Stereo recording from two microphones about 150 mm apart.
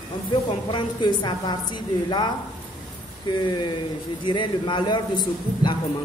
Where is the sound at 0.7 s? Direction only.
30° left (ahead or behind).